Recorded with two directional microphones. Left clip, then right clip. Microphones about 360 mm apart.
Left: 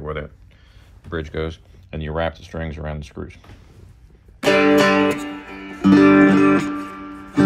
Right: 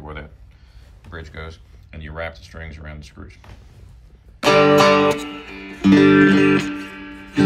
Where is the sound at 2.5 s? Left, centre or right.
Left.